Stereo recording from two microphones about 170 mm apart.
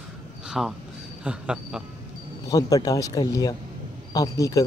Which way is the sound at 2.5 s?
20° left (ahead or behind).